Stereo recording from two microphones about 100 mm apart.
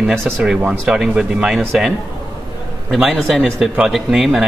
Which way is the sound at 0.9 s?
5° right (ahead or behind).